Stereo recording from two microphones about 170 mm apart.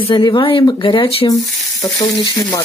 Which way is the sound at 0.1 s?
30° left (ahead or behind).